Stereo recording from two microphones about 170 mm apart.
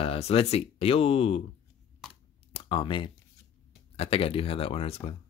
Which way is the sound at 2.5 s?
30° left (ahead or behind).